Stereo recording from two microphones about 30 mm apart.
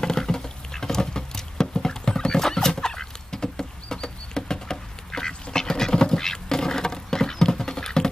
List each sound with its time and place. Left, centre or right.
0.0 s patter: left
2.7 s fowl: left